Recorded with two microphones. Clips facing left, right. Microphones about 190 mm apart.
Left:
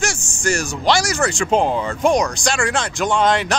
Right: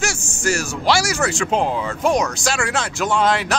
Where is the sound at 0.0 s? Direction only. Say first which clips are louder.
Even; 5° right (ahead or behind).